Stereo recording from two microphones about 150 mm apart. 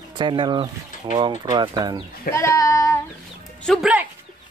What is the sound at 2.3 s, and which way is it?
Speech, 20° left (ahead or behind).